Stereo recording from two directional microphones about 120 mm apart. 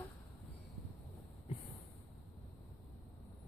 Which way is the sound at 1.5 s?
50° left (ahead or behind).